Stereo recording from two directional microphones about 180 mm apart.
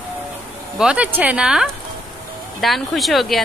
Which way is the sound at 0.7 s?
5° right (ahead or behind).